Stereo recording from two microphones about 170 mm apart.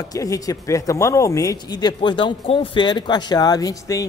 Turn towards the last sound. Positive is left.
turn(degrees=20)  # may be behind; listen again after turning